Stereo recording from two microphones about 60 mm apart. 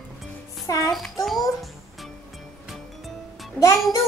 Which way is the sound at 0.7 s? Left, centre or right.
Left.